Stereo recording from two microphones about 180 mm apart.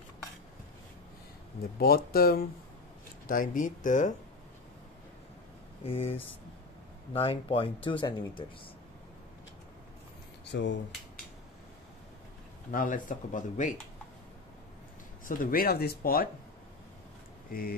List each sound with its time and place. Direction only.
1.8 s speech: 60° left (ahead or behind)
5.9 s speech: 35° left (ahead or behind)
10.4 s speech: 75° left (ahead or behind)
12.7 s speech: 50° left (ahead or behind)
15.2 s speech: 50° left (ahead or behind)
17.5 s speech: 55° left (ahead or behind)